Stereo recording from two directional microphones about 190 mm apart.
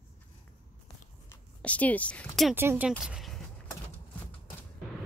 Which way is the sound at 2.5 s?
10° right (ahead or behind).